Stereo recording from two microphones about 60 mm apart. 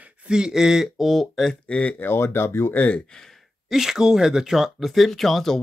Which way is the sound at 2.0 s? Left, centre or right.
Left.